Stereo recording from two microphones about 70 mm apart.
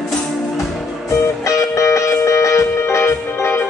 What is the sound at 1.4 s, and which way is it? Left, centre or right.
Music, left.